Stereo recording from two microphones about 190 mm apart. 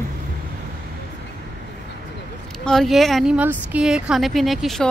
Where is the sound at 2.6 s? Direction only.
Centre (ahead or behind).